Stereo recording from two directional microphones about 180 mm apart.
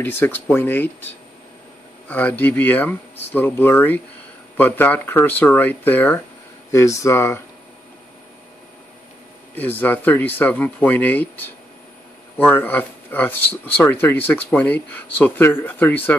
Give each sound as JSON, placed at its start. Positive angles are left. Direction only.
{"t": 0.0, "sound": "speech", "side_deg": 10}
{"t": 2.0, "sound": "speech", "side_deg": 10}
{"t": 9.6, "sound": "speech", "side_deg": 10}